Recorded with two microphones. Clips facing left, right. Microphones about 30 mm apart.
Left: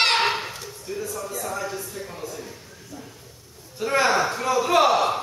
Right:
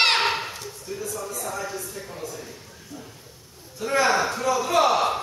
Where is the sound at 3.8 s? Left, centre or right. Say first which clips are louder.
Left 1 dB; centre.